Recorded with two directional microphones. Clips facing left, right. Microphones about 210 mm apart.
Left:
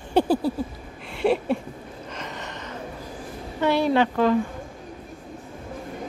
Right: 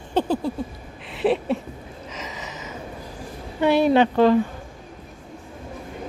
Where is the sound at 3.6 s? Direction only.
15° right (ahead or behind).